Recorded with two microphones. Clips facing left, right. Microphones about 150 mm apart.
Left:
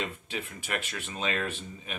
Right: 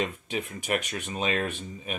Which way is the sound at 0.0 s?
15° right (ahead or behind).